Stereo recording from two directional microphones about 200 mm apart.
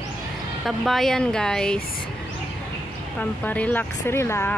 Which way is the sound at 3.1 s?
5° left (ahead or behind).